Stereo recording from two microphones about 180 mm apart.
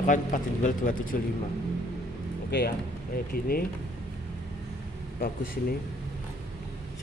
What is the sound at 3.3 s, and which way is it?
Speech, 55° left (ahead or behind).